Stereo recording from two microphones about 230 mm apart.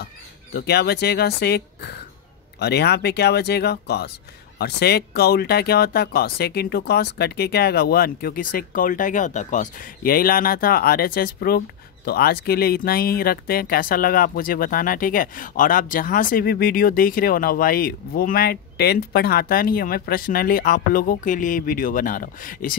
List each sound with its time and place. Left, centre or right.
0.0 s speech: left